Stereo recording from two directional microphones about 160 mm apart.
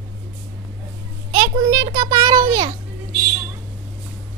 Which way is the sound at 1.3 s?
20° right (ahead or behind).